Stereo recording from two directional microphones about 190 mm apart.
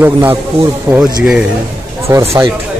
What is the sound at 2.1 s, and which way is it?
Speech, 15° right (ahead or behind).